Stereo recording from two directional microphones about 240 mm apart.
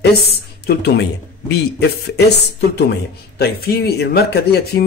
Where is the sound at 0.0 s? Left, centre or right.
Left.